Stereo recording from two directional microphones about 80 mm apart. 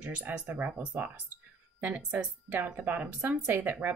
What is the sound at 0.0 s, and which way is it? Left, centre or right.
Speech, centre.